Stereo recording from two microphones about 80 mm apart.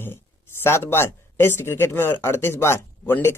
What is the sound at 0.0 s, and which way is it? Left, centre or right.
A man's voice, left.